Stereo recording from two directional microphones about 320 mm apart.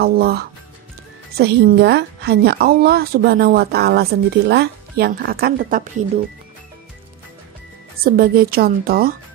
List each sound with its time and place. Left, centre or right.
0.0 s a woman's voice: right
8.0 s a woman's voice: right